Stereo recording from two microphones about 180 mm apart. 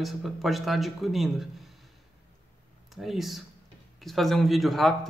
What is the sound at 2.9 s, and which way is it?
Speech, centre (ahead or behind).